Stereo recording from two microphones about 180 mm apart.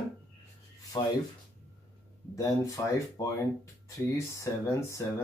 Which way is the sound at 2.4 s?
20° left (ahead or behind).